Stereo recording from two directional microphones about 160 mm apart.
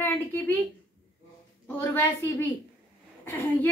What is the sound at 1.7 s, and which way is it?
A woman's voice, 15° left (ahead or behind).